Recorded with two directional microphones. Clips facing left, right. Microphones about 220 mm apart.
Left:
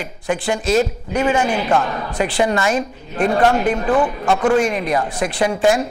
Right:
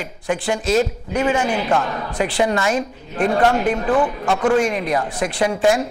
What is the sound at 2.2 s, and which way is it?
A woman's voice, 10° left (ahead or behind).